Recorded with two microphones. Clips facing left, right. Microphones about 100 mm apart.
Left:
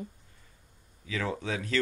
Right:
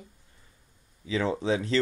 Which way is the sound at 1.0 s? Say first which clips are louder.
Right 6 dB; 25° right (ahead or behind).